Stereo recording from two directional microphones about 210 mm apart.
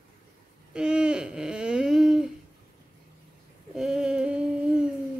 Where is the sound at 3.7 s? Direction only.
5° right (ahead or behind).